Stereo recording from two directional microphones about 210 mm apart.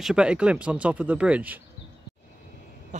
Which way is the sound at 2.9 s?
35° right (ahead or behind).